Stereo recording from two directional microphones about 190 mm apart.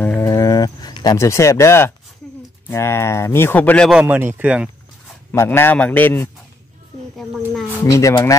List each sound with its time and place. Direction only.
0.0 s a sound: 10° left (ahead or behind)
2.7 s speech: 15° left (ahead or behind)
4.0 s a man's voice: 10° right (ahead or behind)
5.3 s speech: 15° left (ahead or behind)
7.8 s speech: 15° left (ahead or behind)